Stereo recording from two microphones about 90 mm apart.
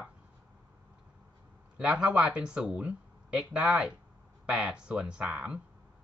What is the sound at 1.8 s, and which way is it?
Speech, 10° right (ahead or behind).